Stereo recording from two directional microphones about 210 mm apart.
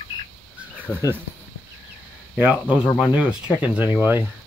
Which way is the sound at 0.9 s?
10° right (ahead or behind).